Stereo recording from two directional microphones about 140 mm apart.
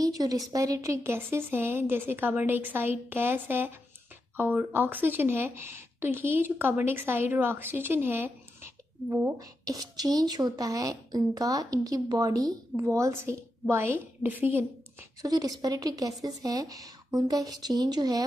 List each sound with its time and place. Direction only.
0.0 s a woman's voice: 25° right (ahead or behind)
15.2 s a woman's voice: 25° right (ahead or behind)